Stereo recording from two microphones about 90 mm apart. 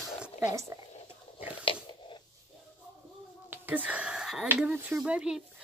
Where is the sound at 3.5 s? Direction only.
20° right (ahead or behind).